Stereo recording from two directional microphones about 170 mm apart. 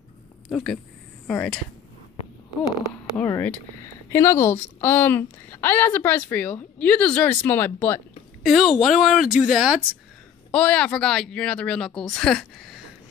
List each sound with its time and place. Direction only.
0.5 s speech: 5° left (ahead or behind)
3.2 s a woman's voice: 10° left (ahead or behind)
8.5 s speech: centre (ahead or behind)